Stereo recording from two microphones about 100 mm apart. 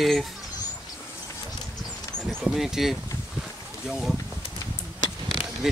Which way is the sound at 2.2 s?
5° right (ahead or behind).